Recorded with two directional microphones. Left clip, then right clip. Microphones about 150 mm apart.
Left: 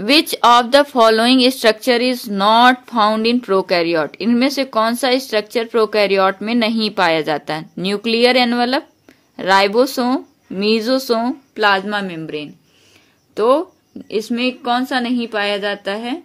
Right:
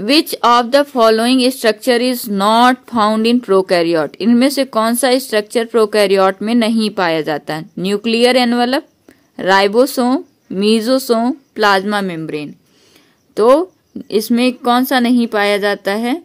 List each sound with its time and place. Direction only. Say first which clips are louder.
0.0 s a woman's voice: even; 30° right (ahead or behind)
11.5 s speech: right 2 dB; 50° right (ahead or behind); by 12.4 s 70° right (ahead or behind)
13.3 s a woman's voice: right 4 dB; 55° right (ahead or behind)